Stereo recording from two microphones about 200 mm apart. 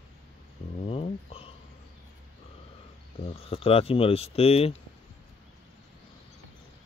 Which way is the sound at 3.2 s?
30° left (ahead or behind).